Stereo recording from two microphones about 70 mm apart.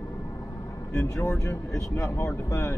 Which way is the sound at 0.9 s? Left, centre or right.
Left.